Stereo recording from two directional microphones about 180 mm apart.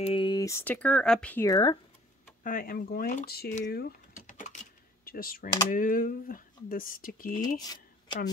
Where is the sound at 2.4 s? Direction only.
50° left (ahead or behind).